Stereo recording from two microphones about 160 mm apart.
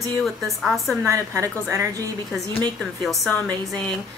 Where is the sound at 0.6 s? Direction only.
Centre (ahead or behind).